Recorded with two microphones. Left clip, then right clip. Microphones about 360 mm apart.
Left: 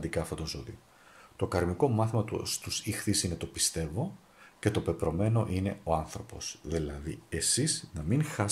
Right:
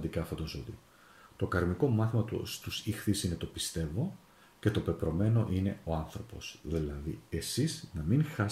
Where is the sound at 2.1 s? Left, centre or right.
Left.